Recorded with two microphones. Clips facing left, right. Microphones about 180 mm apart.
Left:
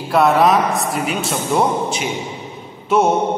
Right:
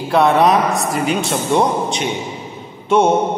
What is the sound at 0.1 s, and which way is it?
A man's voice, centre (ahead or behind).